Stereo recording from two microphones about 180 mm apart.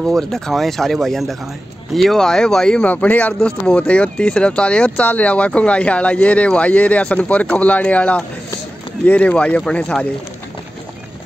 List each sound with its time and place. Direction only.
0.0 s speech: centre (ahead or behind)